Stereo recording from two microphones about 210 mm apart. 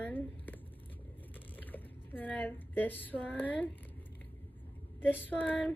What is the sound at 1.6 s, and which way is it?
Speech, 10° left (ahead or behind).